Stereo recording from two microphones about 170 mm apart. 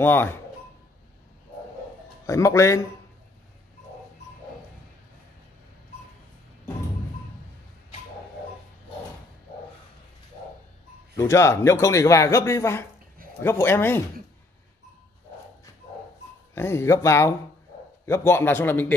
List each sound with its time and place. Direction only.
0.0 s speech: 10° left (ahead or behind)
2.2 s speech: 20° left (ahead or behind)
11.1 s speech: 15° left (ahead or behind)
16.5 s speech: 15° left (ahead or behind)